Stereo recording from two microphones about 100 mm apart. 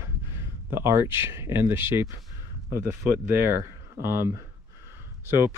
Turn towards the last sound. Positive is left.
turn(degrees=-25)  # may be behind; listen again after turning